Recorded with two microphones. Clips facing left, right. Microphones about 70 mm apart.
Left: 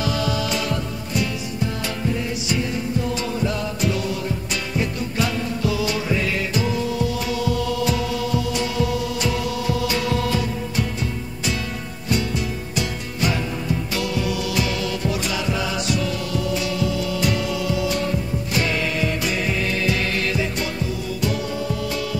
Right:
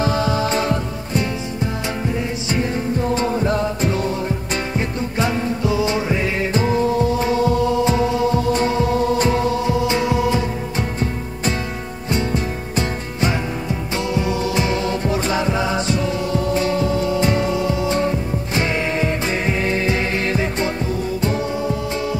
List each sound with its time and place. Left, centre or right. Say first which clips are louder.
0.0 s music: right 4 dB; right
2.5 s music: right 3 dB; right
12.1 s music: right 2 dB; right